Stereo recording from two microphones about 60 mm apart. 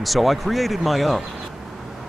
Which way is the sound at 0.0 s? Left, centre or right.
Centre.